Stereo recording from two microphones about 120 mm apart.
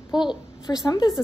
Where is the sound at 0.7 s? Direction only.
20° left (ahead or behind).